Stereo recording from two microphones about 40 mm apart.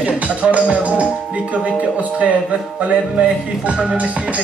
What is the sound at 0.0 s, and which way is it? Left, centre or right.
Music, right.